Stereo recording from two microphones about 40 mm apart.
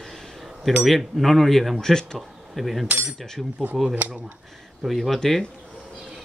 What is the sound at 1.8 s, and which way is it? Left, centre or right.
Speech, centre.